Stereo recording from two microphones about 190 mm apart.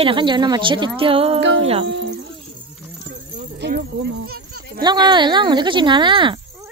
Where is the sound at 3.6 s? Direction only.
60° right (ahead or behind).